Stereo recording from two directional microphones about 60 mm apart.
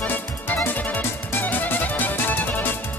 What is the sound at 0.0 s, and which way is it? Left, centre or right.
Music, left.